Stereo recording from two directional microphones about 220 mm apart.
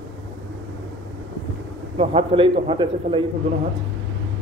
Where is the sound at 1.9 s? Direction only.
25° right (ahead or behind).